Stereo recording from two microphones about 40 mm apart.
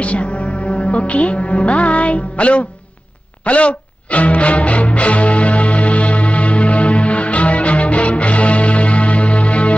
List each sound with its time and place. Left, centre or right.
0.0 s speech: left
3.4 s music: left